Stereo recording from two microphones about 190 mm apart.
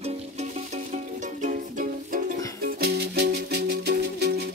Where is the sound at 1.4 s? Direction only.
45° right (ahead or behind).